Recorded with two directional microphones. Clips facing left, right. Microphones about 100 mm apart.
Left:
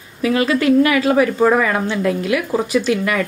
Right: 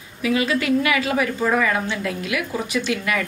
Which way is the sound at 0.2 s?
45° left (ahead or behind).